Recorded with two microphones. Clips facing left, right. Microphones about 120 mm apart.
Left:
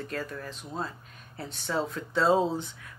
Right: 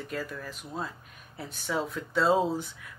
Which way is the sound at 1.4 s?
5° right (ahead or behind).